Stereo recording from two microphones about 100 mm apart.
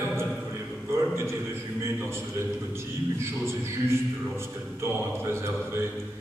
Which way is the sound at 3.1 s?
25° right (ahead or behind).